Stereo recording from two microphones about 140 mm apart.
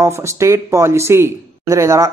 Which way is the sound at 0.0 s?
20° right (ahead or behind).